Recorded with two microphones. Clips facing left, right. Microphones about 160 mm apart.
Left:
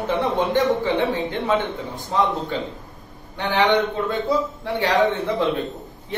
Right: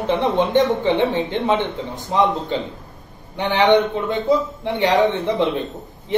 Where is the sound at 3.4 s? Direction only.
20° right (ahead or behind).